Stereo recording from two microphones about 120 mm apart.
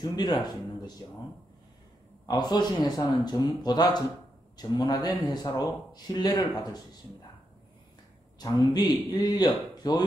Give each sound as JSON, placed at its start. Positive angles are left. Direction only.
{"t": 0.0, "sound": "a man's voice", "side_deg": 35}
{"t": 2.2, "sound": "a man's voice", "side_deg": 35}
{"t": 8.4, "sound": "a man's voice", "side_deg": 35}